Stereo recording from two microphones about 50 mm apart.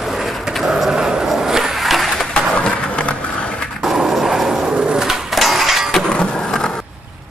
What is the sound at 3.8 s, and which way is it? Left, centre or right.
Skateboard, centre.